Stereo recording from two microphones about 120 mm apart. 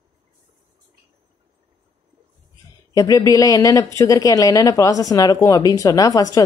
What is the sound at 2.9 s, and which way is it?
A woman's voice, 30° left (ahead or behind).